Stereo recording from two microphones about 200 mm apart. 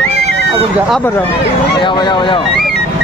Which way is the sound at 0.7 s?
Centre (ahead or behind).